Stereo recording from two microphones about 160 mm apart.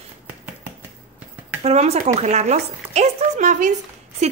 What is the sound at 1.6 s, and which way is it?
A woman's voice, 40° right (ahead or behind).